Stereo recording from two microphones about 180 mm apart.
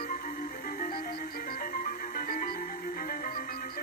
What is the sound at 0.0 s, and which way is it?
Music, 45° left (ahead or behind).